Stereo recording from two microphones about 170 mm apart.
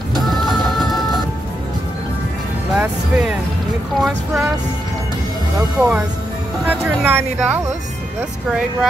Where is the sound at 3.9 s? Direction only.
Centre (ahead or behind).